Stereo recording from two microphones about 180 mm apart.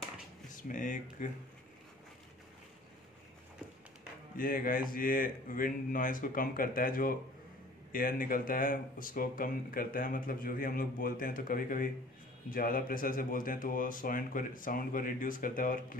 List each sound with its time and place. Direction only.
0.5 s speech: 45° left (ahead or behind)
4.4 s speech: 50° left (ahead or behind)